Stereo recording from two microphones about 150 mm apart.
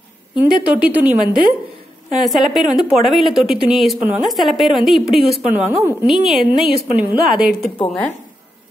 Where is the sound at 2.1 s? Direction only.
Centre (ahead or behind).